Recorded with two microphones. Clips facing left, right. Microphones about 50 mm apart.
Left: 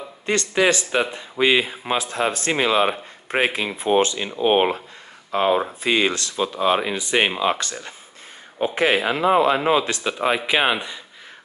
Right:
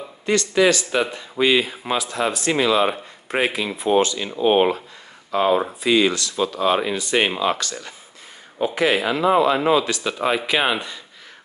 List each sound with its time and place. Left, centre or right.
0.3 s speech: left
6.3 s speech: centre
7.5 s speech: left
10.0 s speech: centre